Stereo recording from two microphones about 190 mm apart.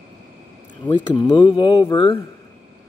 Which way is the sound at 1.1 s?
25° left (ahead or behind).